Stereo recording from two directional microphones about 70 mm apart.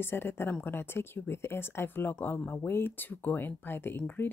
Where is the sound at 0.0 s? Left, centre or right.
Left.